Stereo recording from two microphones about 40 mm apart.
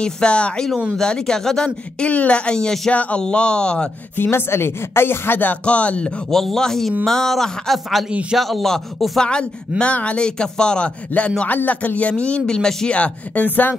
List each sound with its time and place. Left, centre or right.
0.0 s speech: left
0.9 s speech: centre
2.0 s speech: left
2.5 s speech: centre
2.9 s speech: left
3.2 s speech: left
4.2 s speech: left
5.7 s speech: left
6.3 s speech: centre
9.2 s speech: left
11.1 s speech: left
12.4 s speech: centre
12.9 s speech: left